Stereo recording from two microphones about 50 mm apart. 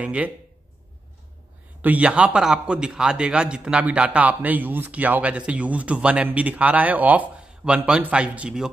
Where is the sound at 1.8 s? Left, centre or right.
Right.